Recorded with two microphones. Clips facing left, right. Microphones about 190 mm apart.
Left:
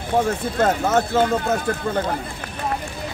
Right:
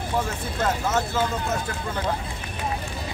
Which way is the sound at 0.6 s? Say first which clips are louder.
Left 5 dB; 55° left (ahead or behind).